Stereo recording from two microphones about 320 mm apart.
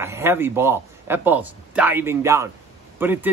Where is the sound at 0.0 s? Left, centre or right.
Centre.